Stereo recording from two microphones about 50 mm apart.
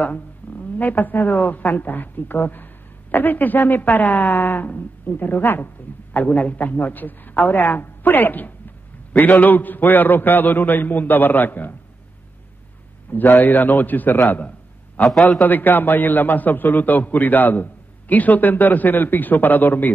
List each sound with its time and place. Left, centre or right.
0.4 s a sound: left
0.7 s a woman's voice: left
6.1 s a woman's voice: left
13.1 s a woman's voice: left
15.0 s a man's voice: centre
15.4 s a woman's voice: left